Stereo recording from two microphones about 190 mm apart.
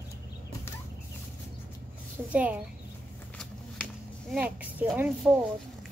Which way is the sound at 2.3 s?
10° right (ahead or behind).